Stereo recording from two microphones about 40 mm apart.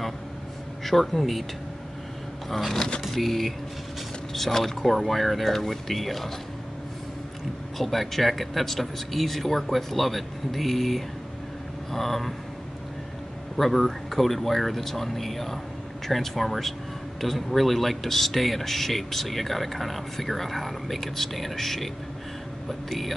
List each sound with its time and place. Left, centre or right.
0.8 s speech: centre
2.5 s speech: centre
7.7 s speech: centre
13.6 s speech: centre